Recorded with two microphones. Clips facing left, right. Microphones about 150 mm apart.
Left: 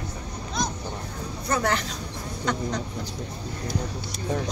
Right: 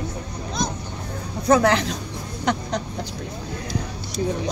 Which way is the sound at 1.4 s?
85° right.